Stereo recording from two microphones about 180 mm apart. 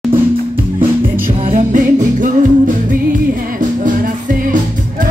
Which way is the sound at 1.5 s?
45° right (ahead or behind).